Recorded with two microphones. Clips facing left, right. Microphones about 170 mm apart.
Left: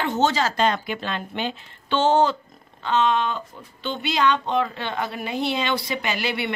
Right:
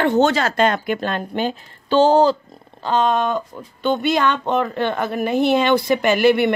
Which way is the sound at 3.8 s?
50° right (ahead or behind).